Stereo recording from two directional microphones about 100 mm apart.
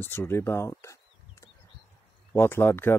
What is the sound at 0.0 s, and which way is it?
Speech, 20° left (ahead or behind).